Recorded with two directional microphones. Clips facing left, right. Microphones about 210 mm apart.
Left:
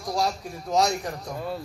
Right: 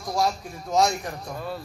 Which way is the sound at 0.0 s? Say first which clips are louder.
Right 1 dB; 35° left (ahead or behind).